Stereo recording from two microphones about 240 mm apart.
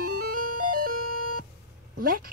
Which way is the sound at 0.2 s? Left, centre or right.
Right.